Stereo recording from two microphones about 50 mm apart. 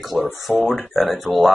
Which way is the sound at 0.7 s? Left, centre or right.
Left.